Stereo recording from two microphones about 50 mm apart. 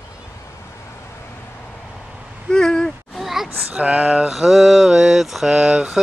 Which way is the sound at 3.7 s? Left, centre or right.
Right.